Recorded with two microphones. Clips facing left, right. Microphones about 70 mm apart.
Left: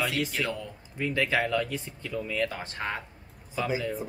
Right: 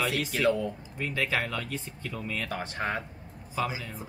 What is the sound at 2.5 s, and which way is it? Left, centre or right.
Speech, right.